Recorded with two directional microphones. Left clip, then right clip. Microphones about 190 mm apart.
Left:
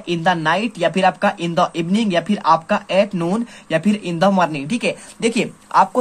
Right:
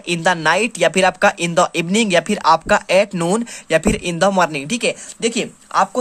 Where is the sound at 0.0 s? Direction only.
40° right (ahead or behind).